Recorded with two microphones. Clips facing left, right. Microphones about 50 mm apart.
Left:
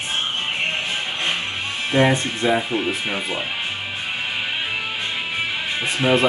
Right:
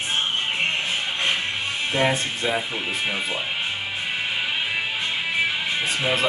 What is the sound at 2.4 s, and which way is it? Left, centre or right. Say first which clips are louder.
Speech: left 7 dB; centre.